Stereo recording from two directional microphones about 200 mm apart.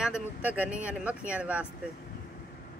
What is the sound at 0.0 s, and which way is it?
Speech, 5° right (ahead or behind).